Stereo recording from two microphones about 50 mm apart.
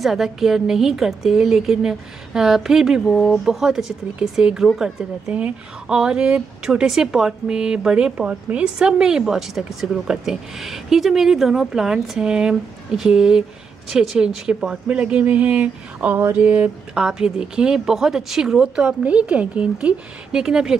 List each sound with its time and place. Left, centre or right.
0.0 s speech: centre
3.1 s speech: centre
3.4 s speech: centre
14.9 s speech: right
16.3 s a sound: right
16.9 s speech: centre
20.3 s speech: centre